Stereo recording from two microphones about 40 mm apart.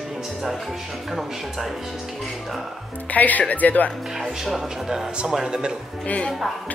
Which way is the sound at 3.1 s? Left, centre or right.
Left.